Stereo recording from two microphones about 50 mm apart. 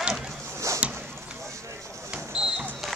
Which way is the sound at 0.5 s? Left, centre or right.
Right.